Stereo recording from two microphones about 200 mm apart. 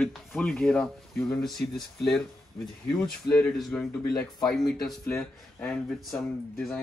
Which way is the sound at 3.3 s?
5° left (ahead or behind).